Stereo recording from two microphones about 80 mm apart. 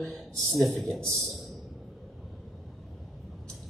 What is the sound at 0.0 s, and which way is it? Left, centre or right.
A man's voice, centre.